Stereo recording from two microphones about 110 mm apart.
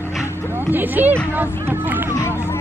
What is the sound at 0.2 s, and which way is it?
Dog, 20° left (ahead or behind).